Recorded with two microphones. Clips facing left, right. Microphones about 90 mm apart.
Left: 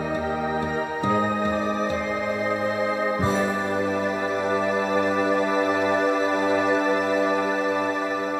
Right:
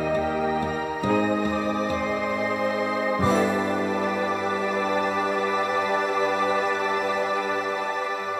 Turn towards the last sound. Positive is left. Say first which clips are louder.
# left 3 dB
turn(degrees=40)  # may be behind; listen again after turning